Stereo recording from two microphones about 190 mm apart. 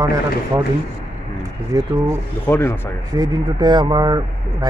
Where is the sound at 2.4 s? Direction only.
10° left (ahead or behind).